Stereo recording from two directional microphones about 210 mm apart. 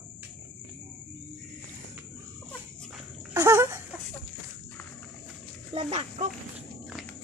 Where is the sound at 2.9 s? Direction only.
10° right (ahead or behind).